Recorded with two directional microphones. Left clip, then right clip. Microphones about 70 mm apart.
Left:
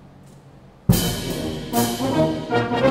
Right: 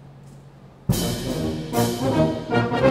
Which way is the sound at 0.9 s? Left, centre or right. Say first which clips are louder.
Left 2 dB; left.